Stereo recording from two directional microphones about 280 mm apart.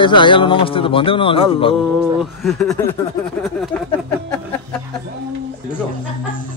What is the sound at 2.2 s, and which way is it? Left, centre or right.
Speech, centre.